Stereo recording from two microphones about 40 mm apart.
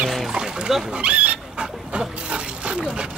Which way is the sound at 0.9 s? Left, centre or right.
Right.